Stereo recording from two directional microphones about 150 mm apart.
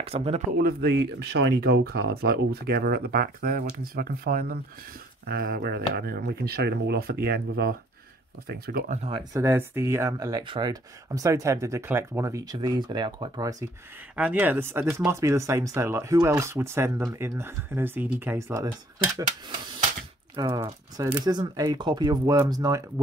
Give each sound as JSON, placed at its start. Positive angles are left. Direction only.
{"t": 0.0, "sound": "speech", "side_deg": -40}
{"t": 0.6, "sound": "speech", "side_deg": -90}
{"t": 9.1, "sound": "speech", "side_deg": -20}
{"t": 14.1, "sound": "speech", "side_deg": -10}
{"t": 20.3, "sound": "speech", "side_deg": -25}